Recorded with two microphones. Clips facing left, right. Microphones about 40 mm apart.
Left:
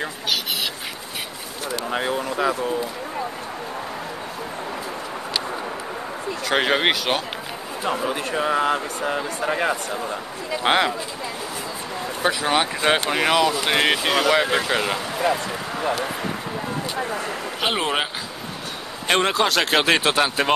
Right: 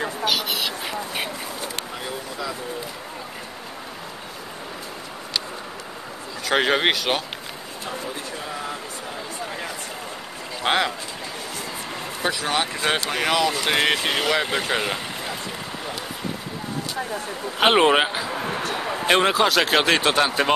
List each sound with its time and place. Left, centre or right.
2.0 s a sound: left
6.5 s speech: centre
8.0 s speech: left
10.6 s speech: centre
12.3 s speech: centre
17.6 s speech: right
19.0 s speech: centre